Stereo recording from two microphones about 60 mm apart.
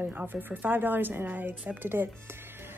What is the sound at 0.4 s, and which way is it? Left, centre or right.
A woman's voice, right.